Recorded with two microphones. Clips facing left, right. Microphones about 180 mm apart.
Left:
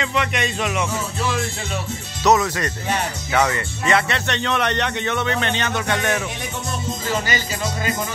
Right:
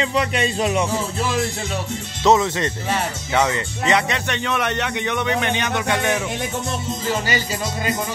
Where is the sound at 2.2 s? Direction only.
25° right (ahead or behind).